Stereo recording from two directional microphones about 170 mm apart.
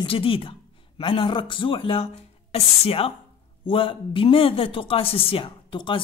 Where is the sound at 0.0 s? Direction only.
30° left (ahead or behind).